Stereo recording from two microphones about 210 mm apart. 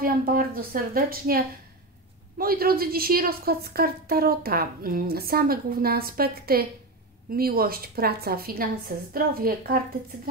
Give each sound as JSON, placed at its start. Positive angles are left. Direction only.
{"t": 0.0, "sound": "a woman's voice", "side_deg": -45}